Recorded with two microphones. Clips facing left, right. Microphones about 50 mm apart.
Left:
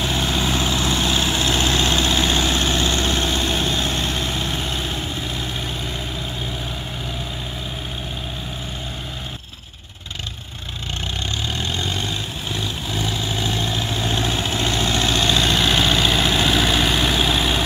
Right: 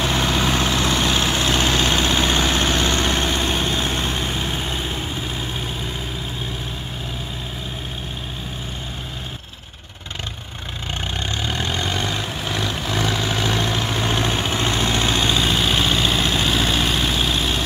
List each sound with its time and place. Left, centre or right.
0.0 s vehicle: right
11.1 s vehicle: right
15.1 s vehicle: centre